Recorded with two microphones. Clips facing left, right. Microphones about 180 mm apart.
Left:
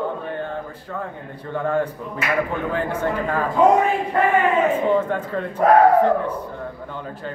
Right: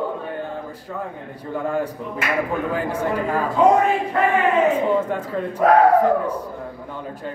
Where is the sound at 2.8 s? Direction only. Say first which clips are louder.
Even; 10° right (ahead or behind).